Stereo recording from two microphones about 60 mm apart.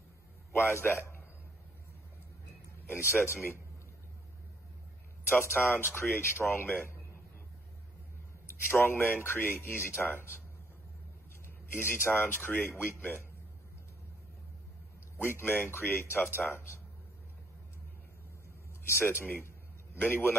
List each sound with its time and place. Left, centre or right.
0.5 s a man's voice: left
2.9 s a man's voice: left
5.3 s a man's voice: left
8.5 s a man's voice: left
11.4 s a man's voice: left
15.1 s a man's voice: left
18.9 s a man's voice: left